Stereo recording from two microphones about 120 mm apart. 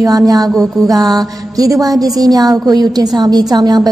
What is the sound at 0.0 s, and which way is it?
A woman's voice, 30° right (ahead or behind).